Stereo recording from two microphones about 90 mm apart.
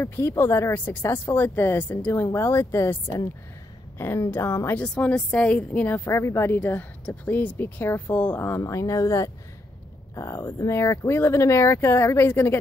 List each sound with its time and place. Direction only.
0.0 s a woman's voice: 30° left (ahead or behind)
4.8 s a woman's voice: 10° left (ahead or behind)
8.5 s a woman's voice: 35° left (ahead or behind)